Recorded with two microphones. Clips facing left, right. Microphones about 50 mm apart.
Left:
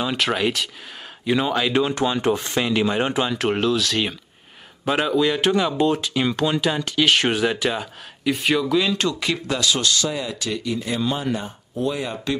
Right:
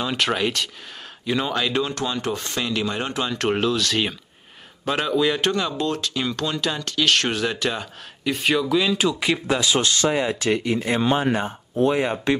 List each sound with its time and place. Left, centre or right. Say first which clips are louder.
0.0 s speech: left 1 dB; centre
3.3 s speech: left 1 dB; centre
5.5 s speech: left 4 dB; centre
9.3 s speech: right 2 dB; right